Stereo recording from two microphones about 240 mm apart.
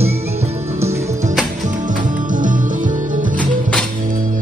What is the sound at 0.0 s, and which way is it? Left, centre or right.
Music, right.